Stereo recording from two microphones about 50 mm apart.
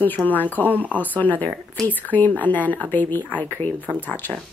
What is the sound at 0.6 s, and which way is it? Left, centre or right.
Speech, right.